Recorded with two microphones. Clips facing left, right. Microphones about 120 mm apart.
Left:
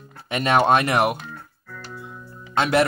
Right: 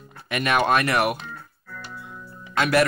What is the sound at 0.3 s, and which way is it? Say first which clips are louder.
Music: left 3 dB; 30° left (ahead or behind).